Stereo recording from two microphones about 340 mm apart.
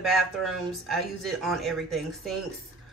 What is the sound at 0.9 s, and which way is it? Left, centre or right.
A woman's voice, centre.